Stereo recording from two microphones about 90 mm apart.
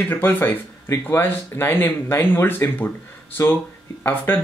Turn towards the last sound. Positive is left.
turn(degrees=20)  # may be behind; listen again after turning